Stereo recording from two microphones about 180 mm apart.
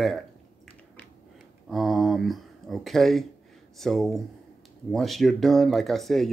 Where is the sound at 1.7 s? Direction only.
Centre (ahead or behind).